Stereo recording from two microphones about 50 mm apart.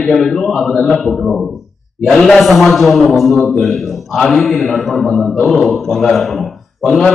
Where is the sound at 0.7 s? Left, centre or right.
Centre.